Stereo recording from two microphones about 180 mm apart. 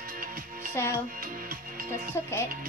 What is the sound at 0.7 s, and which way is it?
Speech, 15° left (ahead or behind).